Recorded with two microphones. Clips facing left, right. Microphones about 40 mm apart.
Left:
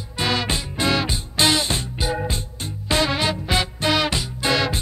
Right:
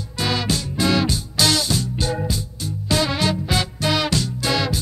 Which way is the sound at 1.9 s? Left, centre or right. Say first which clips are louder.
Even; centre.